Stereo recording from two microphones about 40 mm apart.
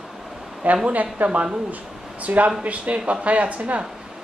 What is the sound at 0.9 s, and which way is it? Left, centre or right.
Speech, right.